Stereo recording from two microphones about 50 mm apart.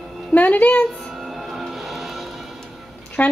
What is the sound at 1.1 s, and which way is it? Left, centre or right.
Music, centre.